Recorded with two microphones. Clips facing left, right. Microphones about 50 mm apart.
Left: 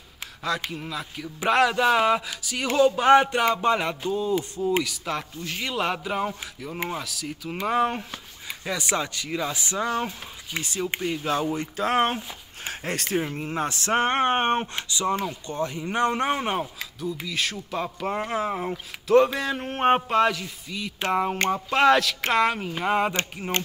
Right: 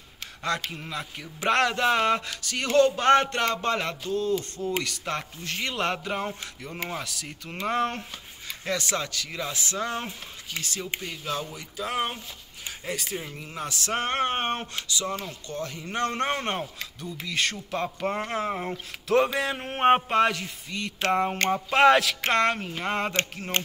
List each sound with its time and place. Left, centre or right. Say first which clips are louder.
0.7 s speech: left 2 dB; centre; by 11.4 s left
11.4 s speech: left 8 dB; left
12.6 s speech: left 3 dB; left
13.2 s speech: left 7 dB; left; by 16.3 s centre
16.3 s speech: left 3 dB; centre